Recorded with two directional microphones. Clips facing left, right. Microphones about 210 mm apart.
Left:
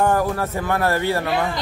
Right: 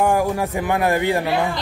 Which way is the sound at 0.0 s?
10° right (ahead or behind).